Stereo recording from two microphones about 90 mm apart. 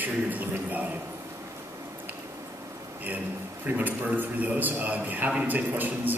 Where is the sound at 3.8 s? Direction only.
20° right (ahead or behind).